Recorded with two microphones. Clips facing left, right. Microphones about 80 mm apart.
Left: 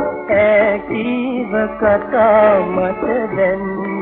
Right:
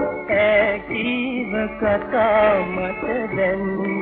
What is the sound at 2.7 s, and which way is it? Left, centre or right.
Music, left.